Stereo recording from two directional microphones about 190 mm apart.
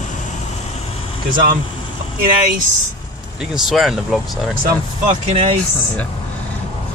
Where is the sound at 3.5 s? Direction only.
Centre (ahead or behind).